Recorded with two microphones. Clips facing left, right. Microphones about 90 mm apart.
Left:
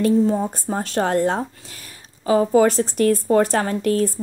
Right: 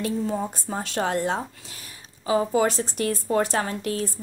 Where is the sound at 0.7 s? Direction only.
40° left (ahead or behind).